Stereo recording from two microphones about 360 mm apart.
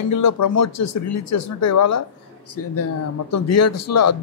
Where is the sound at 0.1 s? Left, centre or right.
Left.